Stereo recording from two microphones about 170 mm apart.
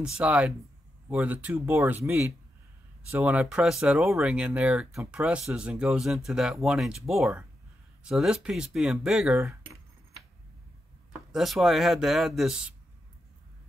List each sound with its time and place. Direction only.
0.0 s speech: 5° right (ahead or behind)
11.3 s speech: centre (ahead or behind)